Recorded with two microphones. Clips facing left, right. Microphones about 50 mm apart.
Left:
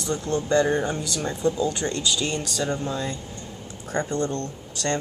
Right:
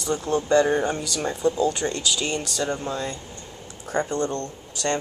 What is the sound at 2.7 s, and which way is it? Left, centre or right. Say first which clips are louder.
Speech: even; centre.